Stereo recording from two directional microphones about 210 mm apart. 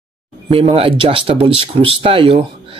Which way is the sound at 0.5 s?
25° right (ahead or behind).